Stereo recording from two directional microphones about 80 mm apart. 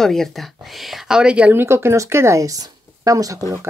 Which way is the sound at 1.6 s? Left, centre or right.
Right.